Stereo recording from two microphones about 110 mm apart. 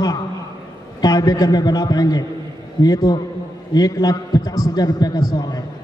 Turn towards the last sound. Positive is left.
turn(degrees=40)  # may be behind; listen again after turning